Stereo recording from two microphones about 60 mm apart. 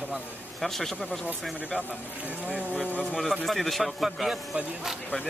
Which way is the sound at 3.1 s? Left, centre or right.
Centre.